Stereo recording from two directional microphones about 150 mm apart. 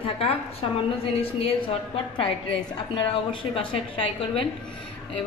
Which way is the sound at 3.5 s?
35° left (ahead or behind).